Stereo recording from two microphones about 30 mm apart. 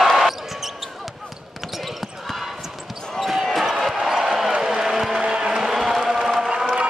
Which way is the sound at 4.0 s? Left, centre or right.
Centre.